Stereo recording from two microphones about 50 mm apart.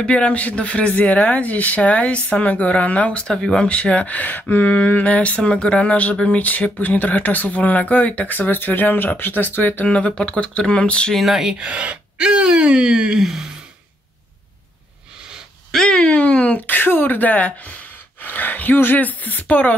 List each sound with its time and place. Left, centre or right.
0.0 s speech: left
9.8 s speech: left
11.1 s speech: centre
11.5 s speech: centre
15.7 s speech: centre
16.0 s speech: left